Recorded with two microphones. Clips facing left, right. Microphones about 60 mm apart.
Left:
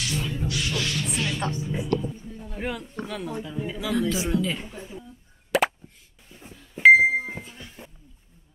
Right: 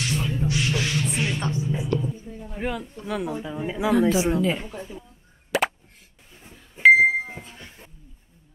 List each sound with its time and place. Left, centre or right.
0.1 s music: centre
0.5 s music: right
1.5 s speech: centre
5.5 s plop: centre
6.8 s a sound: centre
7.4 s a sound: right